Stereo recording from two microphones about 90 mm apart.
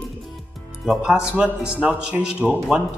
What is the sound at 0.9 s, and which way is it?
Speech, 5° right (ahead or behind).